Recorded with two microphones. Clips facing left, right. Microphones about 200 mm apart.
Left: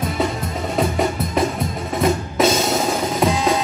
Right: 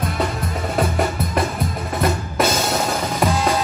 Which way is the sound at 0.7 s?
Centre (ahead or behind).